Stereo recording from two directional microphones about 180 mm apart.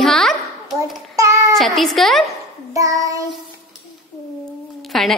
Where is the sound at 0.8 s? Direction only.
15° right (ahead or behind).